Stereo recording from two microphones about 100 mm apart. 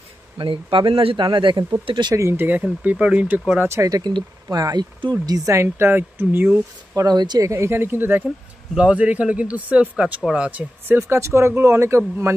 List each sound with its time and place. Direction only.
0.4 s speech: 55° right (ahead or behind)
2.1 s speech: 30° right (ahead or behind)
2.4 s speech: 15° right (ahead or behind)
3.5 s speech: 30° right (ahead or behind)
3.9 s speech: 45° right (ahead or behind); by 6.5 s 20° right (ahead or behind)
7.1 s speech: 45° right (ahead or behind)
7.4 s speech: 25° right (ahead or behind)
10.9 s speech: 25° right (ahead or behind)